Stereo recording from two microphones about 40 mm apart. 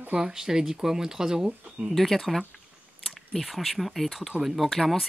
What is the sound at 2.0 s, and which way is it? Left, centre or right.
Speech, centre.